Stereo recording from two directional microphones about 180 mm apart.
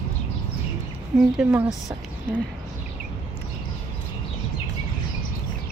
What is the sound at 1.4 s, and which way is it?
Speech, 5° right (ahead or behind).